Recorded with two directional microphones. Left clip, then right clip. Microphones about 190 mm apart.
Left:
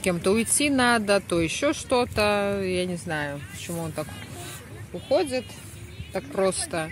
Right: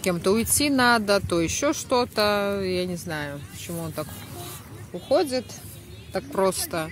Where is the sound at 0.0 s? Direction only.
Centre (ahead or behind).